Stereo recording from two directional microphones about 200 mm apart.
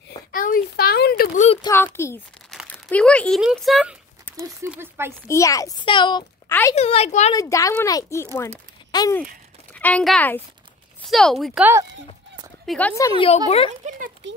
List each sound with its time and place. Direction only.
0.3 s a sound: 45° left (ahead or behind)
1.6 s a child's voice: 10° left (ahead or behind)
4.4 s speech: 15° right (ahead or behind)
5.3 s a child's voice: 15° left (ahead or behind); by 7.3 s 35° left (ahead or behind)
7.3 s a child's voice: 15° left (ahead or behind)
13.7 s speech: 40° right (ahead or behind)